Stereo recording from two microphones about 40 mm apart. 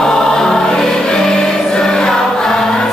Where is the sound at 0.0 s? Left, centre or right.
Centre.